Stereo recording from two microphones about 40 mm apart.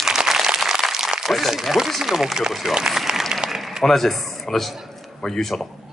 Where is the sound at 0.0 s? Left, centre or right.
Centre.